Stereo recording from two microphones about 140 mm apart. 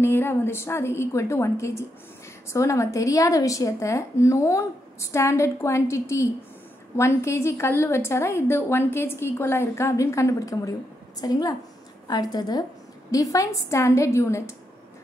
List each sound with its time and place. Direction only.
0.0 s speech: 15° left (ahead or behind)